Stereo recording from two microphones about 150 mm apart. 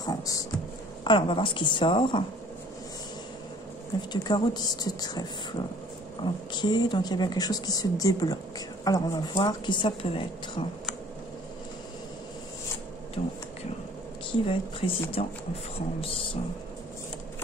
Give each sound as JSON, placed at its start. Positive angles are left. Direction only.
{"t": 0.0, "sound": "a woman's voice", "side_deg": 25}
{"t": 4.1, "sound": "a woman's voice", "side_deg": 30}
{"t": 6.5, "sound": "a woman's voice", "side_deg": 30}
{"t": 13.2, "sound": "a woman's voice", "side_deg": 45}